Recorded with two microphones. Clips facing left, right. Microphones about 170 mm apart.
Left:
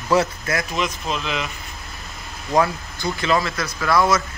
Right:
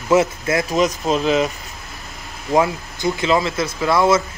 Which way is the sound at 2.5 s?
20° right (ahead or behind).